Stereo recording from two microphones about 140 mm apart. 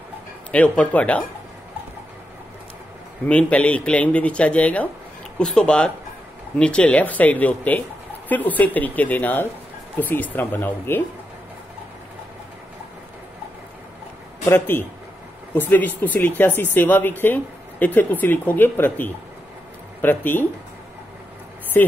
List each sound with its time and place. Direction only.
0.5 s speech: 10° left (ahead or behind)
3.3 s speech: 10° left (ahead or behind)
14.4 s speech: 15° left (ahead or behind)